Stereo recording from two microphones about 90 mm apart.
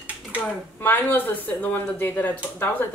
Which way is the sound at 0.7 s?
20° left (ahead or behind).